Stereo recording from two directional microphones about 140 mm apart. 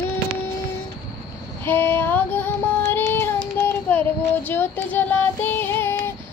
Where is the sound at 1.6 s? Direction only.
15° left (ahead or behind).